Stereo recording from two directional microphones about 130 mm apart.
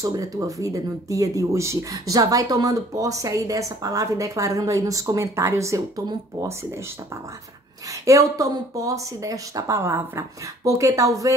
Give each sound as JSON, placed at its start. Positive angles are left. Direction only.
{"t": 0.0, "sound": "speech", "side_deg": -25}
{"t": 8.0, "sound": "speech", "side_deg": -25}